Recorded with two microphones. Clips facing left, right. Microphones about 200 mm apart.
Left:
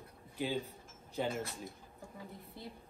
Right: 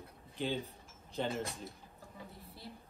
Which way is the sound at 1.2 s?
10° left (ahead or behind).